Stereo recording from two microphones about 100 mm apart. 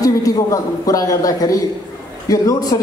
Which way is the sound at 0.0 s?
35° left (ahead or behind).